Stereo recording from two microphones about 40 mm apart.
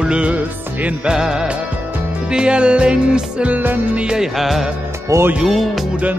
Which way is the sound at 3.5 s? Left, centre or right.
Right.